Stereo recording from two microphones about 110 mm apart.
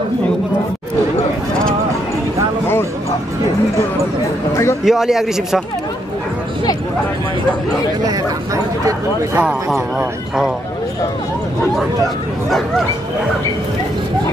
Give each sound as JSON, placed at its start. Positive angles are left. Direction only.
{"t": 4.8, "sound": "speech", "side_deg": -5}
{"t": 9.7, "sound": "speech", "side_deg": -5}
{"t": 12.4, "sound": "speech", "side_deg": 0}